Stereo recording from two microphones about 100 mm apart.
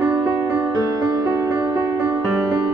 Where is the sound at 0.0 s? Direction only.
25° right (ahead or behind).